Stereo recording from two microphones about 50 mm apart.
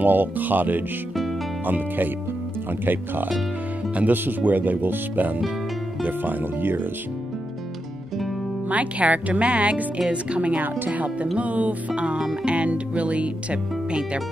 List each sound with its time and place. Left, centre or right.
0.0 s speech: right
3.9 s speech: right
8.6 s speech: right